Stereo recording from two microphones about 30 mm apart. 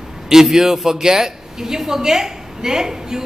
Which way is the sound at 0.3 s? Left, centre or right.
Centre.